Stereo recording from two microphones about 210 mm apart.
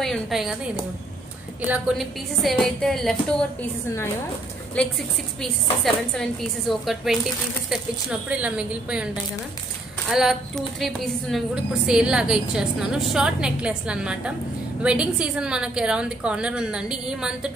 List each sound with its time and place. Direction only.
0.0 s a woman's voice: centre (ahead or behind)
1.7 s a woman's voice: centre (ahead or behind)
4.7 s a woman's voice: centre (ahead or behind)